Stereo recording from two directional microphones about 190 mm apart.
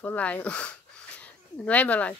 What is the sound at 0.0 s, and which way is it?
Speech, 10° left (ahead or behind).